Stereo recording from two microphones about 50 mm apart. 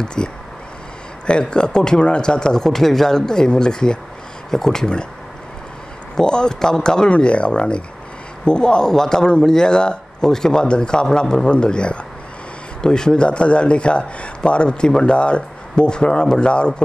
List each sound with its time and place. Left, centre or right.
0.0 s speech: centre
6.1 s speech: centre